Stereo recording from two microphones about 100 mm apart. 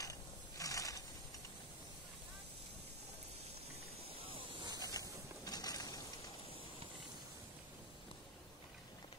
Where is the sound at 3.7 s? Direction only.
85° right; by 4.6 s 65° right (ahead or behind).